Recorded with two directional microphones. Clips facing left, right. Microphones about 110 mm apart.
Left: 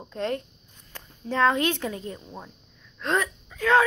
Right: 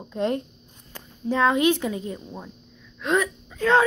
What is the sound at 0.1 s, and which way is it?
Speech, 15° right (ahead or behind).